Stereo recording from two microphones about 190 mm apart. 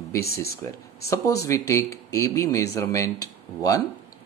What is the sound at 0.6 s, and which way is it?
Speech, 15° left (ahead or behind).